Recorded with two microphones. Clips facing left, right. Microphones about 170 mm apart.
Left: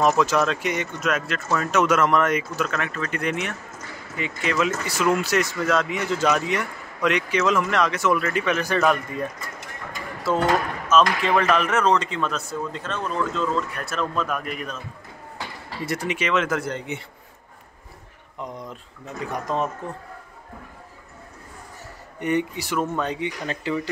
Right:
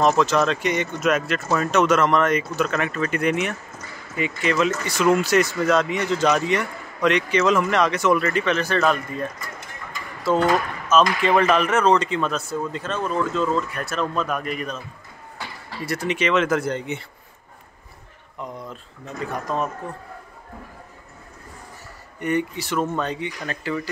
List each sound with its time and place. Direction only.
0.0 s speech: 10° left (ahead or behind)
10.9 s speech: centre (ahead or behind)
15.8 s speech: 20° left (ahead or behind)
16.1 s speech: 5° left (ahead or behind)
18.4 s speech: 15° left (ahead or behind)
22.2 s speech: 20° left (ahead or behind)